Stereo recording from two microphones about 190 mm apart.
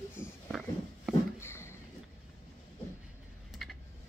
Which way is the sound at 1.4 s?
15° left (ahead or behind).